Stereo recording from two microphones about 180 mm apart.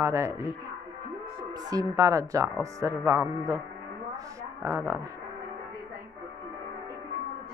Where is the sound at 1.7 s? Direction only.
20° right (ahead or behind).